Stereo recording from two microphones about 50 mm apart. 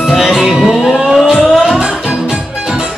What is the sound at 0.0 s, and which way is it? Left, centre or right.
Music, centre.